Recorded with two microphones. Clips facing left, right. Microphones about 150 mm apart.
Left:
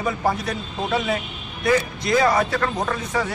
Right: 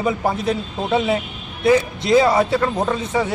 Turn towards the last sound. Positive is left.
turn(degrees=-20)  # may be behind; listen again after turning